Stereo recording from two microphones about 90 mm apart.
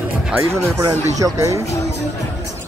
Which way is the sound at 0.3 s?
30° right (ahead or behind).